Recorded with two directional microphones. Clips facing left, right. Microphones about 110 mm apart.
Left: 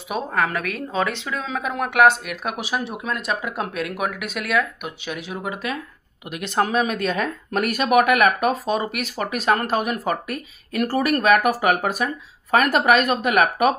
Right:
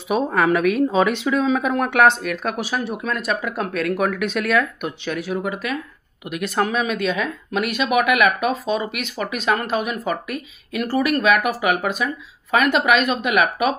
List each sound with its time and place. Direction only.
0.1 s speech: centre (ahead or behind); by 13.7 s 45° left (ahead or behind)